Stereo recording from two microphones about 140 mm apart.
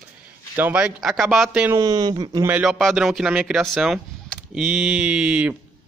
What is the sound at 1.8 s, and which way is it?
Speech, 30° right (ahead or behind).